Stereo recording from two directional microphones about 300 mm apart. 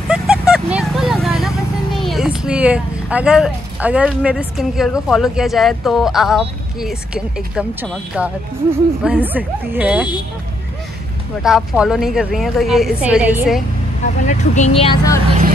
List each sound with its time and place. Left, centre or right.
0.1 s vehicle: centre
2.0 s a woman's voice: centre
11.4 s a woman's voice: centre
14.2 s speech: left